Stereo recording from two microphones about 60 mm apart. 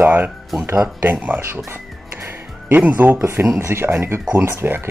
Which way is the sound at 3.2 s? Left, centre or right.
Right.